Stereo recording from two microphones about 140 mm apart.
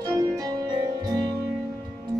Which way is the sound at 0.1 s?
25° right (ahead or behind).